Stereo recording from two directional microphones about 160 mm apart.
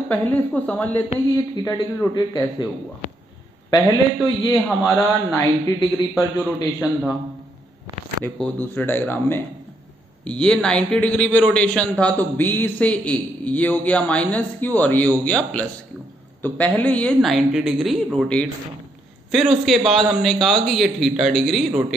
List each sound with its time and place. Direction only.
0.1 s a man's voice: 10° left (ahead or behind)
1.3 s a man's voice: 20° left (ahead or behind)
4.8 s a man's voice: 20° left (ahead or behind)
6.8 s a woman's voice: centre (ahead or behind)
8.2 s a man's voice: 10° left (ahead or behind)